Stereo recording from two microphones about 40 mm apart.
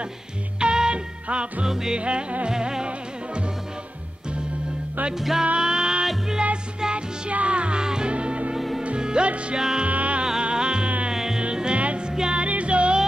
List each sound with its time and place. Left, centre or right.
0.6 s music: right
1.7 s music: centre
2.0 s music: right
5.4 s music: right
8.5 s music: centre
8.8 s music: right
9.8 s music: right
10.4 s music: right
12.4 s music: right